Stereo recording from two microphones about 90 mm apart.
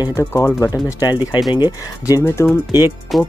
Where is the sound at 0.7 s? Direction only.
45° left (ahead or behind).